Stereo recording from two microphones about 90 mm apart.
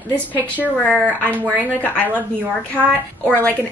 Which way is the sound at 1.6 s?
20° left (ahead or behind).